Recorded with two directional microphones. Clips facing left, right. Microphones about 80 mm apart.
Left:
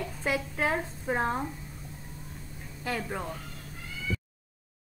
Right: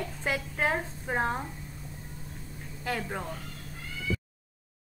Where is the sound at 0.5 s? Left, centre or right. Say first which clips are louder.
Right 2 dB; right.